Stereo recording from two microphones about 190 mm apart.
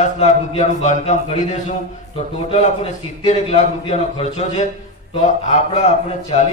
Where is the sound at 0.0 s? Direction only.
40° left (ahead or behind).